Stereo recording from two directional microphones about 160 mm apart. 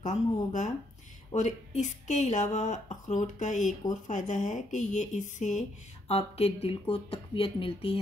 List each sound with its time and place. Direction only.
0.0 s speech: 50° left (ahead or behind)